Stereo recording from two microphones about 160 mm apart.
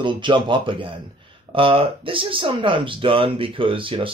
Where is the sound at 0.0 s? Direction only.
30° right (ahead or behind).